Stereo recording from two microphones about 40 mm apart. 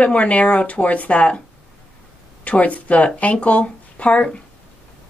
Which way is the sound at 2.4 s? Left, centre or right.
Left.